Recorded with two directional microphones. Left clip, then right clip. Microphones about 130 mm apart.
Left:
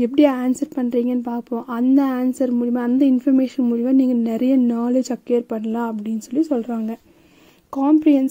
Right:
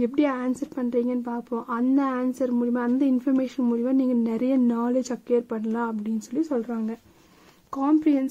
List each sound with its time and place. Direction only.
0.0 s a woman's voice: 30° left (ahead or behind)
7.7 s a woman's voice: 20° left (ahead or behind)